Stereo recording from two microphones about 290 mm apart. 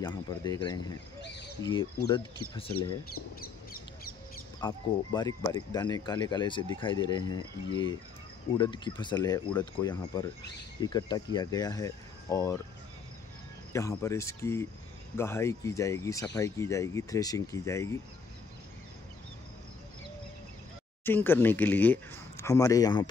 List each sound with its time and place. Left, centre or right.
0.0 s speech: centre
3.3 s a sound: left
4.6 s speech: centre
13.7 s speech: centre
21.0 s speech: centre